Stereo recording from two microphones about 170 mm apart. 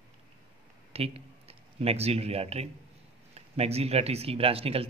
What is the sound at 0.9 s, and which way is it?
A man's voice, 35° right (ahead or behind).